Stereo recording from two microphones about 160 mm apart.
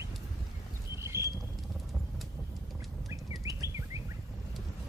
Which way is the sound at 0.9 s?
15° right (ahead or behind).